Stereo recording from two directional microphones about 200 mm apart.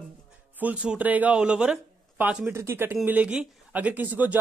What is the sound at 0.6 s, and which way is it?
Speech, 5° right (ahead or behind).